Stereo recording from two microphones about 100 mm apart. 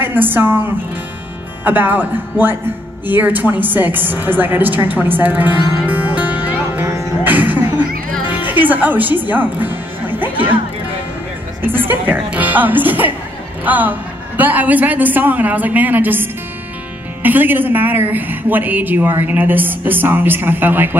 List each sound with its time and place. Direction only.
0.0 s a woman's voice: 20° right (ahead or behind)
5.9 s music: 15° right (ahead or behind)
8.4 s speech: 15° right (ahead or behind)
11.6 s a woman's voice: 20° right (ahead or behind)